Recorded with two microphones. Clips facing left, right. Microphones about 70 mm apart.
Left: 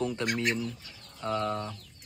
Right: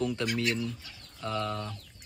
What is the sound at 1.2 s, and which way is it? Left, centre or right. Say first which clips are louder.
Speech: left 2 dB; left.